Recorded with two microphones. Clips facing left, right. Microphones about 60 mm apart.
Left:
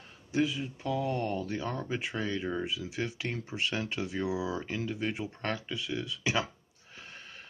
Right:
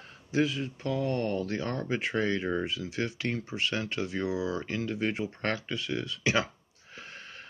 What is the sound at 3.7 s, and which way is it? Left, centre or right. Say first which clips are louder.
Speech: right 1 dB; centre.